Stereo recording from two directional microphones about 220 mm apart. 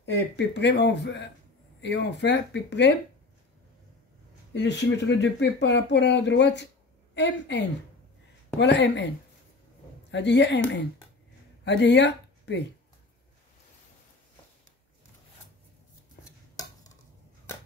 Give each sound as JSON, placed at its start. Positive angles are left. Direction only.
{"t": 0.0, "sound": "speech", "side_deg": 50}
{"t": 4.6, "sound": "speech", "side_deg": 55}
{"t": 10.1, "sound": "speech", "side_deg": 50}